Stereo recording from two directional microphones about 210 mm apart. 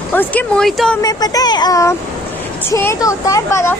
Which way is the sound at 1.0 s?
20° left (ahead or behind).